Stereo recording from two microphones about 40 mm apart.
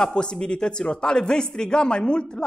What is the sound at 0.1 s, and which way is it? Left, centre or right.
A man's voice, left.